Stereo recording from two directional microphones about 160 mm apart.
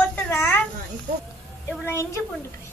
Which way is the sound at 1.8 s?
15° left (ahead or behind).